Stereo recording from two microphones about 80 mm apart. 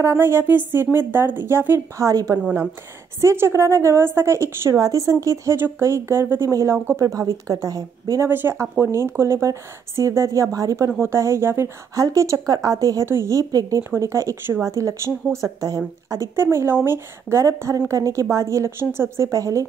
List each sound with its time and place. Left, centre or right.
0.0 s speech: right
2.0 s speech: right
3.2 s a woman's voice: right
8.3 s a woman's voice: right
13.8 s a woman's voice: right